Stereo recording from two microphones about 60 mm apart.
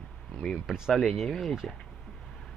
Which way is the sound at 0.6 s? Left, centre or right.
Centre.